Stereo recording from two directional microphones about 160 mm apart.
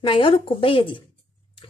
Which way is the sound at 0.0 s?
35° left (ahead or behind).